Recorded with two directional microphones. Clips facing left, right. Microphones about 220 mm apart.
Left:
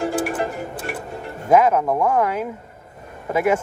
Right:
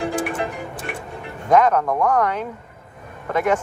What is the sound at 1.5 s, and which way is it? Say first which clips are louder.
Speech: left 1 dB; 5° left (ahead or behind).